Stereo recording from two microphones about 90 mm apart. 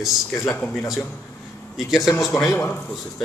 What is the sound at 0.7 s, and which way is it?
Speech, 5° right (ahead or behind).